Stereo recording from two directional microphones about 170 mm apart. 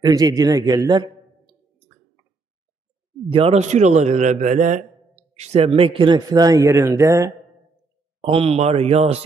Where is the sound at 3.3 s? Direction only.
35° right (ahead or behind); by 7.3 s 15° right (ahead or behind).